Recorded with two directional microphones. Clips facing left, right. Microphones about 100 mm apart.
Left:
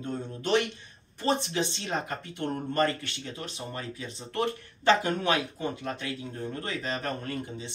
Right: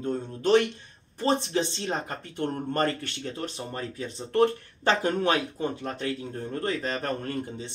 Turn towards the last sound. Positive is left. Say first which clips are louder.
# right 3 dB
turn(degrees=-40)  # may be behind; listen again after turning